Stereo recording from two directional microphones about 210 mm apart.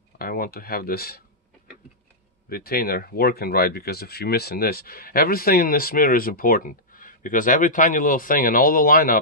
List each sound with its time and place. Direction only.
0.2 s speech: 45° left (ahead or behind)
2.5 s speech: 45° left (ahead or behind)